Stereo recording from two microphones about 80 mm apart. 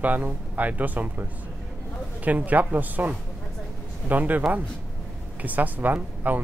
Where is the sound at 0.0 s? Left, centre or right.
Centre.